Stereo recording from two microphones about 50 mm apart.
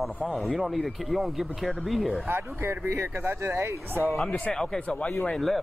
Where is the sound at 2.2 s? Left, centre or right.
Right.